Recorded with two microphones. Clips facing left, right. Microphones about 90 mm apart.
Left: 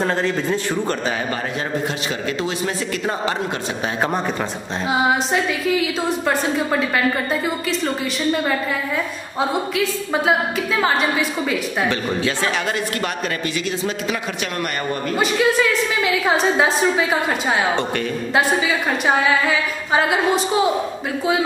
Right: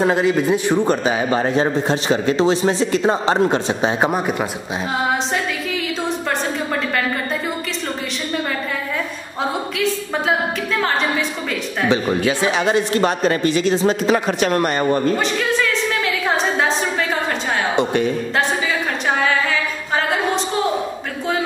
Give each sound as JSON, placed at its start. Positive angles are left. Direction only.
{"t": 0.0, "sound": "a man's voice", "side_deg": -10}
{"t": 1.5, "sound": "speech", "side_deg": -30}
{"t": 4.0, "sound": "a man's voice", "side_deg": -15}
{"t": 4.9, "sound": "a woman's voice", "side_deg": 5}
{"t": 9.4, "sound": "a woman's voice", "side_deg": 5}
{"t": 12.3, "sound": "speech", "side_deg": -20}
{"t": 15.1, "sound": "a woman's voice", "side_deg": 10}
{"t": 17.7, "sound": "speech", "side_deg": -20}
{"t": 20.0, "sound": "a woman's voice", "side_deg": 10}